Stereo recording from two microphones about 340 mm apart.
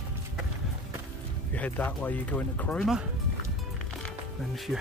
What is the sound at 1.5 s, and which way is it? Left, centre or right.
Speech, centre.